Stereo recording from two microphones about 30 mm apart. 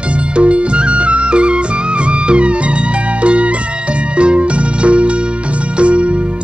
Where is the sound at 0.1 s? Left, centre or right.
Right.